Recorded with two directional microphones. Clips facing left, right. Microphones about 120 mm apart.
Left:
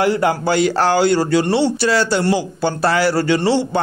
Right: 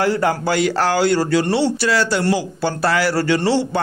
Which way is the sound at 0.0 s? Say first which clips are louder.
Left 2 dB; 20° left (ahead or behind).